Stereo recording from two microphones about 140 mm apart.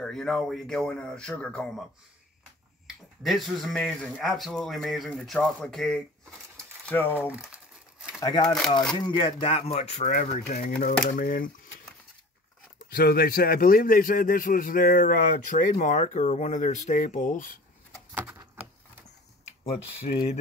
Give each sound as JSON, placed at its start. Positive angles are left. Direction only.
{"t": 0.0, "sound": "speech", "side_deg": 5}
{"t": 3.2, "sound": "speech", "side_deg": 0}
{"t": 6.5, "sound": "a sound", "side_deg": 10}
{"t": 7.2, "sound": "crumpling", "side_deg": -10}
{"t": 8.2, "sound": "speech", "side_deg": 30}
{"t": 10.5, "sound": "speech", "side_deg": 90}
{"t": 12.7, "sound": "speech", "side_deg": 90}
{"t": 15.8, "sound": "speech", "side_deg": 65}
{"t": 18.1, "sound": "a sound", "side_deg": -20}
{"t": 19.6, "sound": "speech", "side_deg": 45}